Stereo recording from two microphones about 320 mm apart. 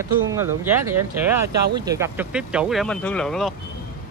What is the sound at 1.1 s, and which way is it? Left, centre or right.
Speech, right.